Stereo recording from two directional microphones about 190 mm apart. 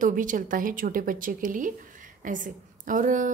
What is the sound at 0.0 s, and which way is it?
A woman's voice, 45° right (ahead or behind).